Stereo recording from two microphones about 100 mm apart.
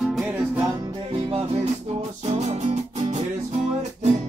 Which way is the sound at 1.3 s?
90° right.